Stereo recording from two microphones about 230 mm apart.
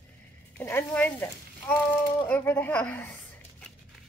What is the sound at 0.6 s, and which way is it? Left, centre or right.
A woman's voice, centre.